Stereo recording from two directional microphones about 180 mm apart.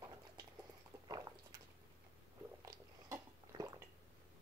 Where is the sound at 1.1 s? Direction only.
20° right (ahead or behind).